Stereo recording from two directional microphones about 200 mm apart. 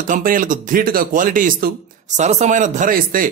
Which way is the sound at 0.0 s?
45° right (ahead or behind).